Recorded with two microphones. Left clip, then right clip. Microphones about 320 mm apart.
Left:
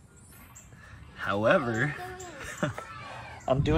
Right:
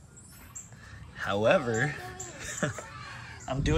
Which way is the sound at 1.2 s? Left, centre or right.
Centre.